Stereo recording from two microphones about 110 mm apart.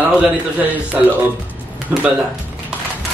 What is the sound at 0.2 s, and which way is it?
A man's voice, 15° right (ahead or behind).